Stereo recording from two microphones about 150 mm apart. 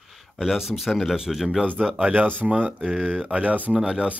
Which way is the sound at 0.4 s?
Centre (ahead or behind).